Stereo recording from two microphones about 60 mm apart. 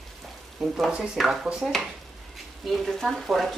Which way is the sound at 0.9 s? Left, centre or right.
Centre.